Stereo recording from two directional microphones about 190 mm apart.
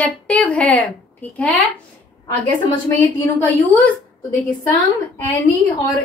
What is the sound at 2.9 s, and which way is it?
Speech, 10° left (ahead or behind).